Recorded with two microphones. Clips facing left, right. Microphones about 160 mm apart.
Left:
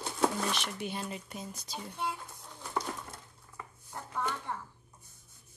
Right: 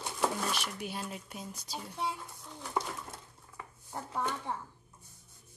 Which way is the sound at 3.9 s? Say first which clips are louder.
Right 1 dB; 25° right (ahead or behind).